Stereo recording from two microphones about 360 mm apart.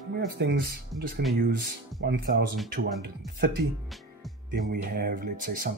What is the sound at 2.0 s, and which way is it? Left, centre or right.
Speech, right.